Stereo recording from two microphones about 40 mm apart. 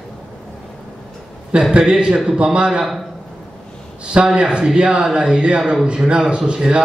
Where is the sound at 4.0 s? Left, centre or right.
Right.